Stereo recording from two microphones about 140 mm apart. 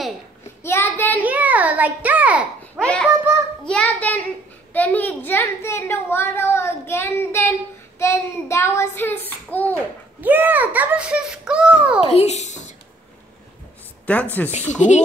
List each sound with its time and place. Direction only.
0.7 s child singing: 15° left (ahead or behind)
1.2 s a sound: 10° right (ahead or behind)
2.8 s a child's voice: 5° right (ahead or behind)
3.6 s a child's voice: 10° left (ahead or behind)
10.2 s a child's voice: 15° right (ahead or behind)
12.0 s a child's voice: 50° left (ahead or behind)
14.0 s a child's voice: 10° left (ahead or behind)
14.5 s speech: 55° left (ahead or behind)